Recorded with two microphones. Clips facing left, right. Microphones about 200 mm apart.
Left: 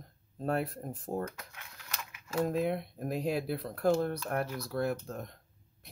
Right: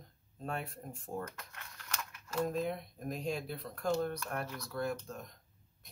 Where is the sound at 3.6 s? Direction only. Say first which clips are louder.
Left 5 dB; 35° left (ahead or behind).